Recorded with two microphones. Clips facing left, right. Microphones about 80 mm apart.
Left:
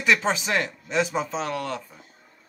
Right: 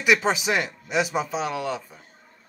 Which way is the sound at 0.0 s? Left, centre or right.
Centre.